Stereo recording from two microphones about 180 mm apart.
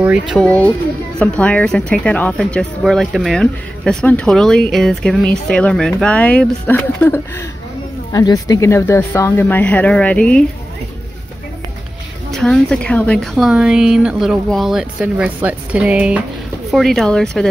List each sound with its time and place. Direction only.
0.3 s speech: 5° left (ahead or behind)
12.4 s speech: 5° left (ahead or behind)